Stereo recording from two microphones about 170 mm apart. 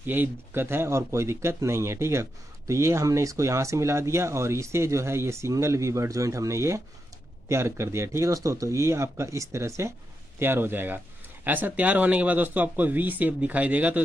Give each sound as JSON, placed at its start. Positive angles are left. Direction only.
{"t": 0.0, "sound": "speech", "side_deg": -10}